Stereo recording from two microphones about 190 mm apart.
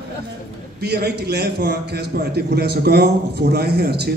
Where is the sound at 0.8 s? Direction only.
55° right (ahead or behind).